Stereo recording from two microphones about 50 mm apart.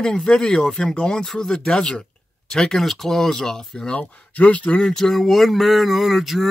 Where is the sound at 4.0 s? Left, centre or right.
Left.